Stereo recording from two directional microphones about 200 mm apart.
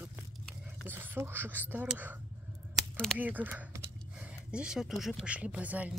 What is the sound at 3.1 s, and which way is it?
Speech, 10° right (ahead or behind).